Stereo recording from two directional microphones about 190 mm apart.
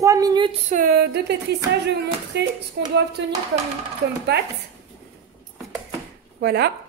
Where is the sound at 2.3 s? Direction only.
65° right (ahead or behind).